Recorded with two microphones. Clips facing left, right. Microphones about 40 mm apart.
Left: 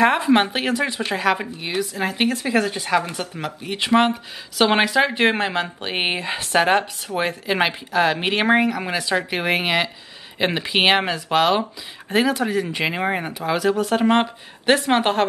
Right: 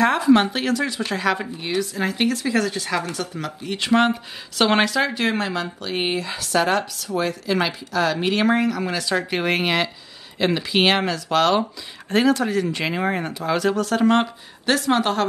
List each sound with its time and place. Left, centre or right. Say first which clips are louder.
0.2 s speech: right 1 dB; left
1.2 s speech: left 2 dB; centre
2.0 s speech: left 1 dB; left
9.3 s speech: even; centre
10.4 s speech: even; left; by 13.7 s centre
13.7 s speech: even; left